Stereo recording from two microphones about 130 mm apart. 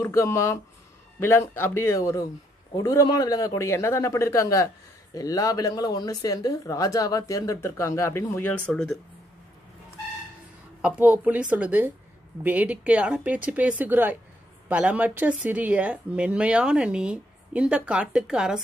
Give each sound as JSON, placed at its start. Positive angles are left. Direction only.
{"t": 0.0, "sound": "speech", "side_deg": 20}
{"t": 10.8, "sound": "a woman's voice", "side_deg": -10}